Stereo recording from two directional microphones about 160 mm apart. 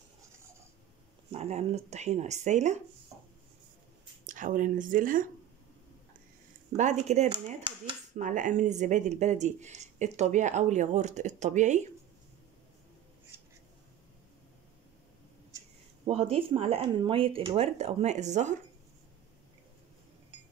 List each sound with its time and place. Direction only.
1.3 s speech: 45° right (ahead or behind)
4.3 s speech: 55° right (ahead or behind)
6.8 s speech: 45° right (ahead or behind)
7.2 s speech: 30° right (ahead or behind)
8.2 s speech: 55° right (ahead or behind)
16.1 s speech: 35° right (ahead or behind)